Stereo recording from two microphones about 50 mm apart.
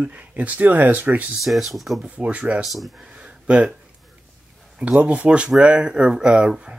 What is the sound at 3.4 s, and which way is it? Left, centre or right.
Speech, right.